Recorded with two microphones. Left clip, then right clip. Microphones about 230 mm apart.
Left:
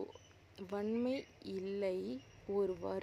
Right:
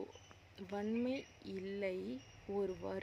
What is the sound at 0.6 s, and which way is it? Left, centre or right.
Speech, centre.